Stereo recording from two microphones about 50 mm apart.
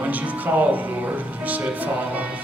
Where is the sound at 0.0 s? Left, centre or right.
Right.